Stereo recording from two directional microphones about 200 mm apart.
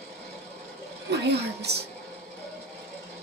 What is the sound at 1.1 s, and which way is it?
Speech, 55° right (ahead or behind).